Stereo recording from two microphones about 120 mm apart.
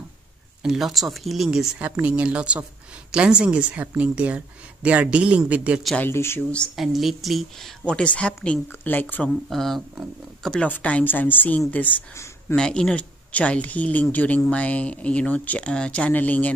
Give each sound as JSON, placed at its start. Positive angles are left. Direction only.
{"t": 0.6, "sound": "a woman's voice", "side_deg": -5}
{"t": 5.9, "sound": "speech", "side_deg": 20}
{"t": 6.5, "sound": "speech", "side_deg": 5}
{"t": 9.5, "sound": "speech", "side_deg": 0}